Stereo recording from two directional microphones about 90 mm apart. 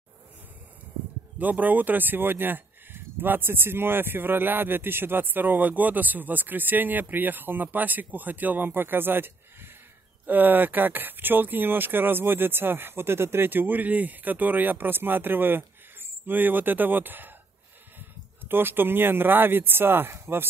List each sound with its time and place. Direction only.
1.4 s speech: 20° right (ahead or behind)